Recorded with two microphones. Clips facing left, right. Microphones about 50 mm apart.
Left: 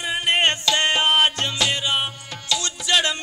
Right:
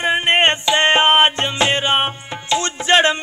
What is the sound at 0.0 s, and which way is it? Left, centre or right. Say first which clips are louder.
Music: right 5 dB; right.